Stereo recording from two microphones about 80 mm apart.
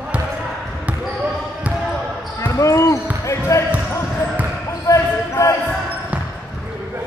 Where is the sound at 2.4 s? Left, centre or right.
Left.